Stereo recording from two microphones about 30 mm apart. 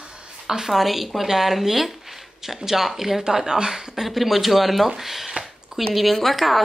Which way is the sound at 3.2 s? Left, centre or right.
Right.